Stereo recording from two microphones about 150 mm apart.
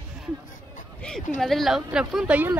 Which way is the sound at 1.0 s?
5° left (ahead or behind).